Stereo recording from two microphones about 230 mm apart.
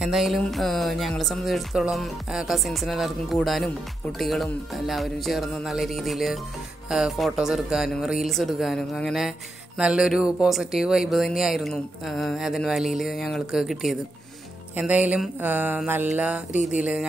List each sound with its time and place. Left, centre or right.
0.0 s speech: centre